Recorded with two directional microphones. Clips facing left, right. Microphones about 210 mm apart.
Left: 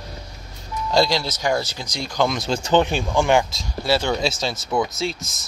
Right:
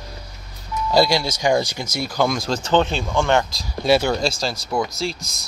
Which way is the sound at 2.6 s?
15° left (ahead or behind).